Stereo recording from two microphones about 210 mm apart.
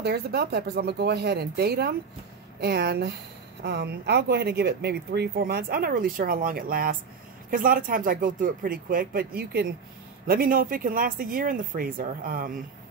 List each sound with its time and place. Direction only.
0.0 s speech: 50° right (ahead or behind)